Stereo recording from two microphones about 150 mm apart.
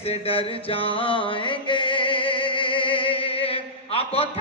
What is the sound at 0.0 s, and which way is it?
Music, 40° left (ahead or behind).